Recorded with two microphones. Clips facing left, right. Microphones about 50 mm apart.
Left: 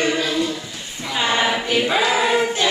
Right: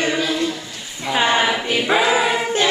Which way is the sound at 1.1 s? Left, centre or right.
Centre.